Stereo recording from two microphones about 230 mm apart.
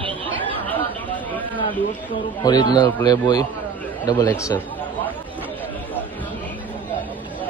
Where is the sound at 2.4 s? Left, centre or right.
Centre.